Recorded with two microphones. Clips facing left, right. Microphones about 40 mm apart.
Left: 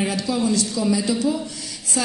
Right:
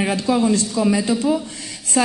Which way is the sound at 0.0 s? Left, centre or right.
Right.